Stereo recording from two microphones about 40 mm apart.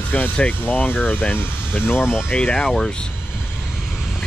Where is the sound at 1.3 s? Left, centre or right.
Left.